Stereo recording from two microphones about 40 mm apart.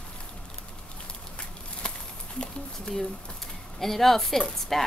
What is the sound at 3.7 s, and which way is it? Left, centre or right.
A woman's voice, centre.